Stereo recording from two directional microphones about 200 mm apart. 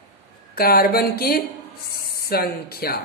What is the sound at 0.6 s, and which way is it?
A woman's voice, 50° left (ahead or behind).